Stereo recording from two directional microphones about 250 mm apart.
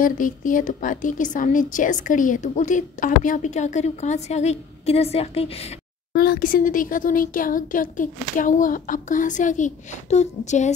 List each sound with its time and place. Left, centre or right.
0.0 s a woman's voice: left
6.1 s a woman's voice: left